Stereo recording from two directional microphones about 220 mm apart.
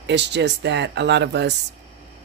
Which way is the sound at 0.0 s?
50° right (ahead or behind).